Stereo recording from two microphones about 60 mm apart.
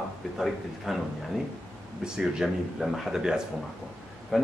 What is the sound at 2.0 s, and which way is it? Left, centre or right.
Speech, centre.